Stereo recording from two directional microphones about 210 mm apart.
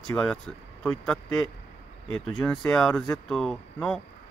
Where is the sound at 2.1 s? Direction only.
75° left (ahead or behind).